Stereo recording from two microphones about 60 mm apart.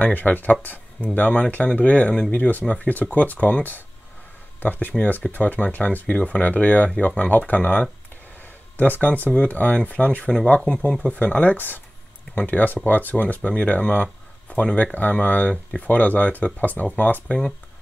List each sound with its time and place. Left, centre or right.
0.0 s speech: left